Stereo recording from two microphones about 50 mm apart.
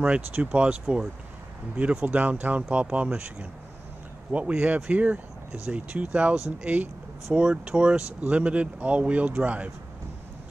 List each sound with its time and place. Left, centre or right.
0.0 s speech: right
7.3 s speech: right